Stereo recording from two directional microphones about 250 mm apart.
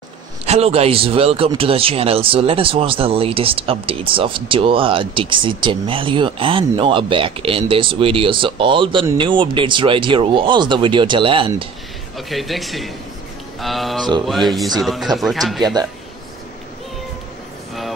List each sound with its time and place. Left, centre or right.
0.5 s speech: right
12.2 s speech: centre
15.6 s speech: centre